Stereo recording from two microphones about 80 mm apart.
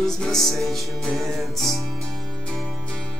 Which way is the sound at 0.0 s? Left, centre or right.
Centre.